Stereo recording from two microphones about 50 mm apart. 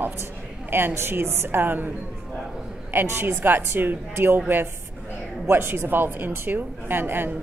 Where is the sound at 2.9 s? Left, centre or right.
Right.